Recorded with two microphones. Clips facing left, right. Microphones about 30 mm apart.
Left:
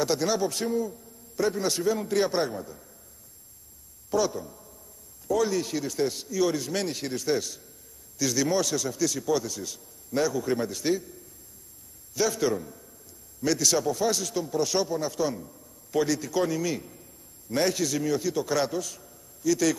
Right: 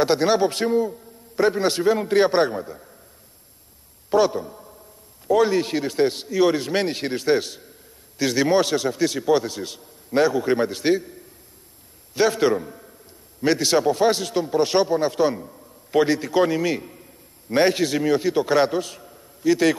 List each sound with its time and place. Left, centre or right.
0.0 s a man's voice: right
4.1 s a man's voice: right